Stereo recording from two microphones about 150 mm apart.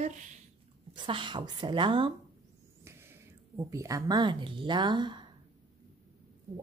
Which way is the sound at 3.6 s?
20° right (ahead or behind).